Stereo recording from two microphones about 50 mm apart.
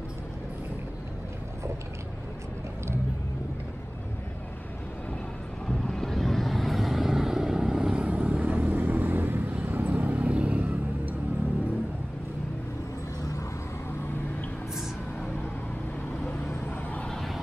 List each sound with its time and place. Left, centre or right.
5.9 s vehicle: centre; by 11.1 s right
17.1 s vehicle: centre